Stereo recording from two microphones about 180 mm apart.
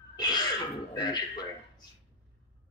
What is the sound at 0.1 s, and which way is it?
Throat clearing, 25° left (ahead or behind).